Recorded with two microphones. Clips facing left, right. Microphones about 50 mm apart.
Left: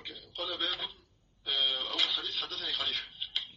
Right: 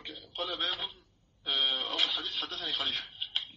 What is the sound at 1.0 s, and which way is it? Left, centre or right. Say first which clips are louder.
Radio: right 2 dB; right.